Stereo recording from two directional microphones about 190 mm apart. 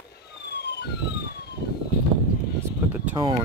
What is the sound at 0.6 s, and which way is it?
Police car, 60° left (ahead or behind).